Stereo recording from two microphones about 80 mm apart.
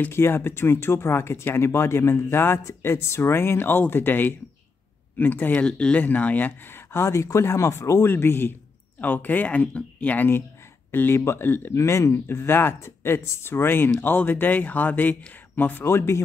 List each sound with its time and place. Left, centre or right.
0.1 s speech: left
5.5 s speech: centre
11.7 s speech: left